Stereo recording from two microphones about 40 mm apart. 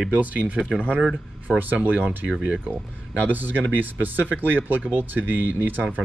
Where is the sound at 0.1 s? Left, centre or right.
Right.